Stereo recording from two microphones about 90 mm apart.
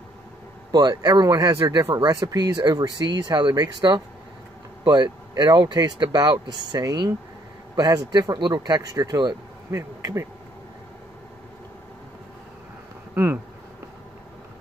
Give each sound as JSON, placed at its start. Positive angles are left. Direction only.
{"t": 0.7, "sound": "speech", "side_deg": -50}
{"t": 2.0, "sound": "speech", "side_deg": -50}
{"t": 9.7, "sound": "bee", "side_deg": -35}
{"t": 13.1, "sound": "speech", "side_deg": -20}